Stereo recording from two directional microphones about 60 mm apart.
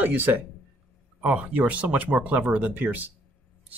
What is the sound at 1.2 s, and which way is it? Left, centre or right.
Speech, right.